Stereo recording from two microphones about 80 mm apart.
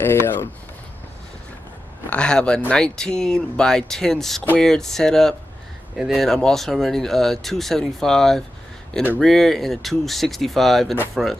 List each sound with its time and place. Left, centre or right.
0.0 s speech: left
2.0 s speech: centre